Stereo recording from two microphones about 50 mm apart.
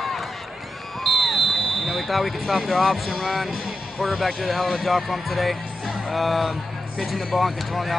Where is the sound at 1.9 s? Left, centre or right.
Centre.